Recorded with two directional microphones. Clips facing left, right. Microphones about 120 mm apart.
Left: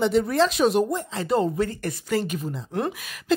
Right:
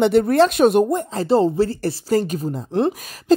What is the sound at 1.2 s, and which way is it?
Speech, 30° right (ahead or behind).